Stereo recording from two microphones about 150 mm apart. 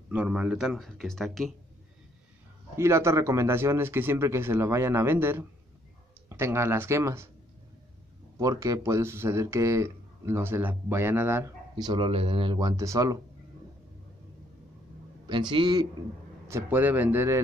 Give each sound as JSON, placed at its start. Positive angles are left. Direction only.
{"t": 0.1, "sound": "speech", "side_deg": -10}
{"t": 2.8, "sound": "speech", "side_deg": -20}
{"t": 8.4, "sound": "speech", "side_deg": -20}
{"t": 11.7, "sound": "speech", "side_deg": -30}
{"t": 15.2, "sound": "speech", "side_deg": -30}
{"t": 16.4, "sound": "speech", "side_deg": -15}